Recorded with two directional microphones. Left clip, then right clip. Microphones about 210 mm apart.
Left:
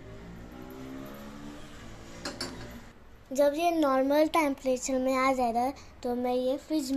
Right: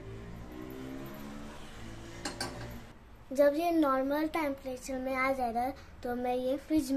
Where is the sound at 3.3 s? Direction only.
10° left (ahead or behind).